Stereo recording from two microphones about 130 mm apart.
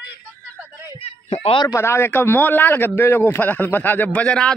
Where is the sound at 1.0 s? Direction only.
50° left (ahead or behind).